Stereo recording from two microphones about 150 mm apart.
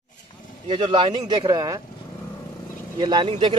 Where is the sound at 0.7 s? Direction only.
35° right (ahead or behind).